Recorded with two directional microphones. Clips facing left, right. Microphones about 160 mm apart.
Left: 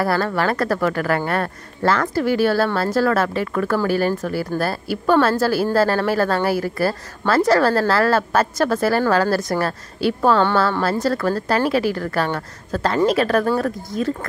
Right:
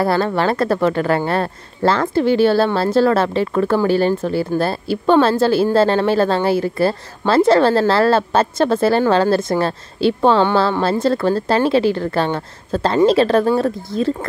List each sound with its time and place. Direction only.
0.0 s a woman's voice: 25° right (ahead or behind)